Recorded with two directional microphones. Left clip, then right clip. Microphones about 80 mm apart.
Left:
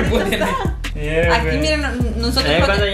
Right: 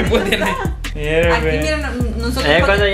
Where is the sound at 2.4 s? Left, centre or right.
Right.